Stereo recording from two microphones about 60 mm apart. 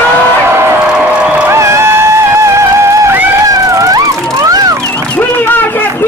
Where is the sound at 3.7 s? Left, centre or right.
Right.